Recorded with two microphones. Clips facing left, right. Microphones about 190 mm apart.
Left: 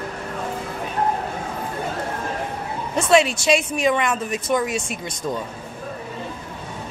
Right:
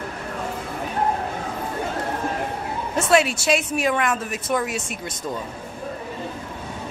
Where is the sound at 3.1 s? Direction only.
5° right (ahead or behind).